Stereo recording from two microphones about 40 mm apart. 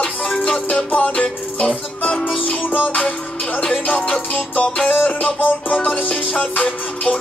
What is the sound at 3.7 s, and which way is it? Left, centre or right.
Music, left.